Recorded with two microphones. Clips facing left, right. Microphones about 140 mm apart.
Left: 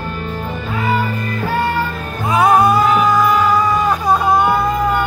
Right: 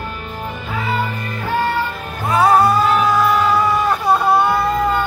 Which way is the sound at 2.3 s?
15° left (ahead or behind).